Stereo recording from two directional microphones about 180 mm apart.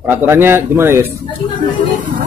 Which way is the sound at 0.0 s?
15° right (ahead or behind).